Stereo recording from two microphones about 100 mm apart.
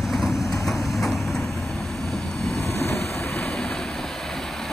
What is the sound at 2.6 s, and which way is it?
Vehicle, 25° left (ahead or behind).